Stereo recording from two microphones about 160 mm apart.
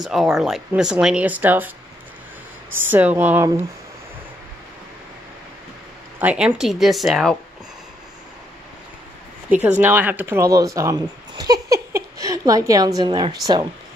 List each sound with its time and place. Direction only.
0.0 s speech: centre (ahead or behind)
2.7 s speech: 10° right (ahead or behind)
6.2 s speech: 5° right (ahead or behind)
9.8 s speech: 10° right (ahead or behind); by 13.7 s 25° right (ahead or behind)